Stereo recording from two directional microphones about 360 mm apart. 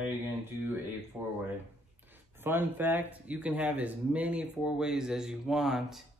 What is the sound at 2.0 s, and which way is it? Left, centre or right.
Speech, centre.